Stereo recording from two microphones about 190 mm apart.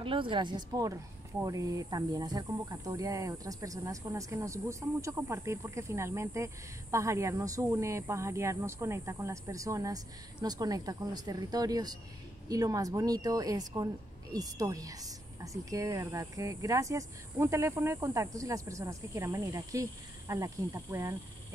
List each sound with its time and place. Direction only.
0.0 s speech: 25° right (ahead or behind)